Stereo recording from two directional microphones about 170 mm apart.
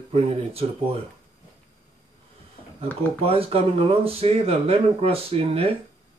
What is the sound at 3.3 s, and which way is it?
Speech, 35° right (ahead or behind).